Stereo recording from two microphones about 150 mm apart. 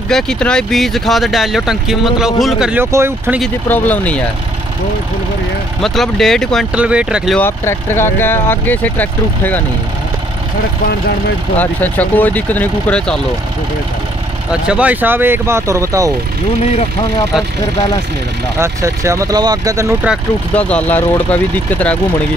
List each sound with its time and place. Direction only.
0.1 s speech: 5° left (ahead or behind)
2.8 s speech: 15° right (ahead or behind)
3.6 s speech: 10° left (ahead or behind)
5.8 s speech: centre (ahead or behind)
6.7 s speech: 10° right (ahead or behind)
7.3 s speech: 15° left (ahead or behind)
11.5 s speech: 10° left (ahead or behind)
14.5 s speech: 10° right (ahead or behind)
18.6 s speech: 20° right (ahead or behind)
20.5 s speech: 10° left (ahead or behind)